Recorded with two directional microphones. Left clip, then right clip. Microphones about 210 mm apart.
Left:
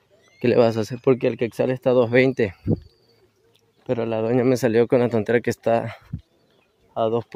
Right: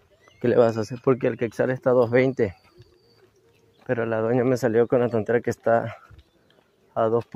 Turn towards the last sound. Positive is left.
turn(degrees=20)  # may be behind; listen again after turning